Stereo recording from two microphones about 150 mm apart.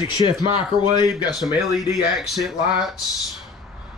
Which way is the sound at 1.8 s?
Centre (ahead or behind).